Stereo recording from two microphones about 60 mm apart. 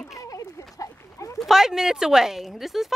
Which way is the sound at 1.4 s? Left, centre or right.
Centre.